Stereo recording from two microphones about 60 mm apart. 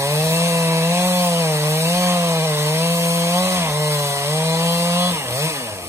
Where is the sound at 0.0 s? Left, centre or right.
Right.